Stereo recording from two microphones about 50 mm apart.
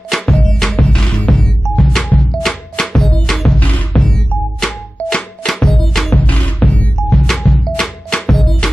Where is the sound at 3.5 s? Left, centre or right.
Left.